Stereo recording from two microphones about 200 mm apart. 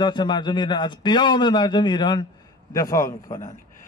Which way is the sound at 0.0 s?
20° left (ahead or behind).